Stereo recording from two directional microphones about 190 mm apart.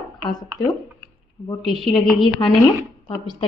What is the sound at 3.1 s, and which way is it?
Speech, 25° left (ahead or behind).